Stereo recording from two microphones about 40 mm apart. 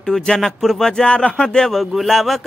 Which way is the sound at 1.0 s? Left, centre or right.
Left.